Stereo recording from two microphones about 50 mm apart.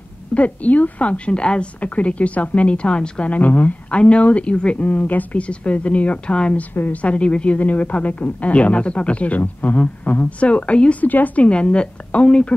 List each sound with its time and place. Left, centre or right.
0.3 s speech: left
6.7 s a woman's voice: left
7.0 s speech: left